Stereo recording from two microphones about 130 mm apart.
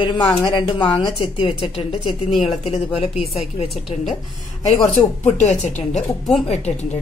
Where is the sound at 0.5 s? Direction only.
40° left (ahead or behind).